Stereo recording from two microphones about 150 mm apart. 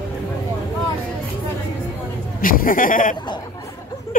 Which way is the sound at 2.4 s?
70° left (ahead or behind).